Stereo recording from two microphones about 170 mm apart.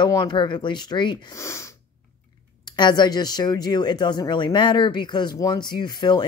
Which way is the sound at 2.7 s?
25° left (ahead or behind).